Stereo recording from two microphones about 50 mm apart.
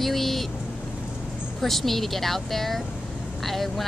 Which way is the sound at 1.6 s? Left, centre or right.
Centre.